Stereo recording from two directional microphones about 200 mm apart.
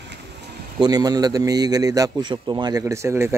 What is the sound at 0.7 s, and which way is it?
Speech, 20° right (ahead or behind).